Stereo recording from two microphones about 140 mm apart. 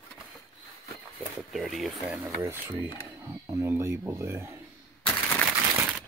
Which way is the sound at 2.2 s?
20° right (ahead or behind).